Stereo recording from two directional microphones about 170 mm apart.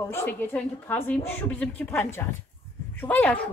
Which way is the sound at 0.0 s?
15° left (ahead or behind).